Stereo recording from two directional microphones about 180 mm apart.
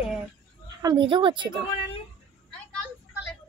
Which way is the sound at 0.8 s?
25° right (ahead or behind).